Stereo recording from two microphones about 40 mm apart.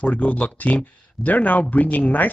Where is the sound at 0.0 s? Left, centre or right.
Left.